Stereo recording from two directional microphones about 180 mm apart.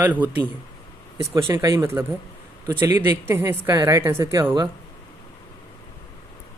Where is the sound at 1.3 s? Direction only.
20° right (ahead or behind).